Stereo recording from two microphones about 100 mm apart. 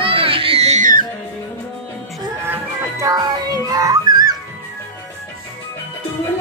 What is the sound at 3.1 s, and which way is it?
Music, 35° right (ahead or behind).